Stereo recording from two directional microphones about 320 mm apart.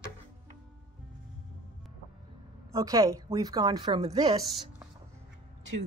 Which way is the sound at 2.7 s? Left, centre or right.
Centre.